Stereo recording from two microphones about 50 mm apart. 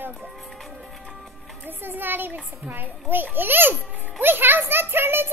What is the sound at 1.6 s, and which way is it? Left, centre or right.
A child's voice, right.